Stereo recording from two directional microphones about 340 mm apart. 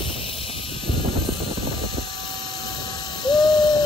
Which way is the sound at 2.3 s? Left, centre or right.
Centre.